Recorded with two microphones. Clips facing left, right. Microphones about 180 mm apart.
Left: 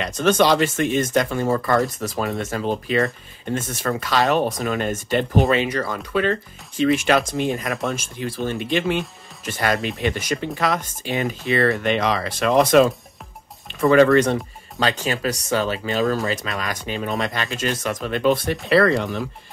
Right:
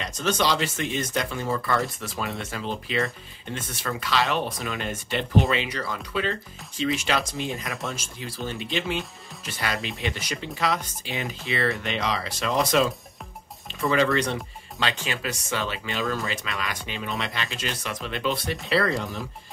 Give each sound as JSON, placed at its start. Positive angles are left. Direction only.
{"t": 0.0, "sound": "speech", "side_deg": 60}
{"t": 18.7, "sound": "speech", "side_deg": 60}